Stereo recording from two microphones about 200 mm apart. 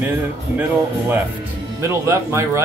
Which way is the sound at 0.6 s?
10° right (ahead or behind).